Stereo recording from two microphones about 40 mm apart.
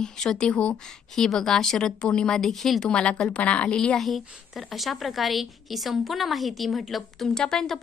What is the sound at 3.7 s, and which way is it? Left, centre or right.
Speech, left.